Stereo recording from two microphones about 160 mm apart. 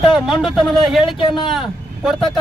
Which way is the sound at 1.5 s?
Centre (ahead or behind).